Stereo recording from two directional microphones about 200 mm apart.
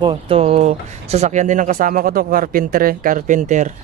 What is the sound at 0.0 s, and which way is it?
Speech, 25° right (ahead or behind).